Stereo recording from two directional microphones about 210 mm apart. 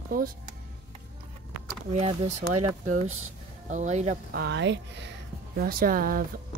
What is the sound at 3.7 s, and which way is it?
Speech, 35° right (ahead or behind).